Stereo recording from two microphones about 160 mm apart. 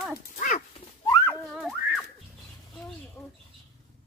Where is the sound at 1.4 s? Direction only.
Centre (ahead or behind).